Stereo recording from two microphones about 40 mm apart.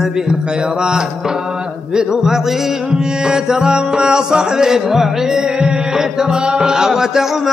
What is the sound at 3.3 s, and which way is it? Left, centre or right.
Music, centre.